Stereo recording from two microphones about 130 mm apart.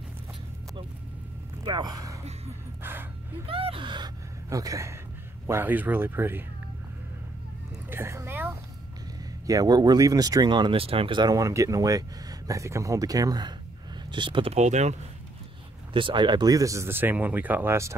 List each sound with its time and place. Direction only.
1.6 s speech: 30° right (ahead or behind)
2.8 s gasp: 15° right (ahead or behind)
3.4 s speech: 45° right (ahead or behind); by 4.9 s 25° right (ahead or behind)
5.5 s speech: 15° right (ahead or behind)
7.9 s speech: 20° right (ahead or behind)
9.5 s speech: 30° right (ahead or behind); by 15.0 s 60° right (ahead or behind)
15.9 s speech: 40° right (ahead or behind); by 17.9 s 20° right (ahead or behind)